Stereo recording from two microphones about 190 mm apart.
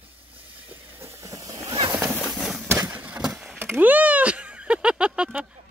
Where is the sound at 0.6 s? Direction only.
10° right (ahead or behind).